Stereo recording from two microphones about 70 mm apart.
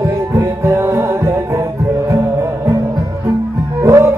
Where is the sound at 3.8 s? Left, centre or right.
Right.